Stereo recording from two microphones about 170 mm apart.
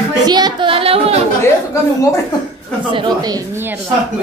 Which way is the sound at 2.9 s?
25° right (ahead or behind).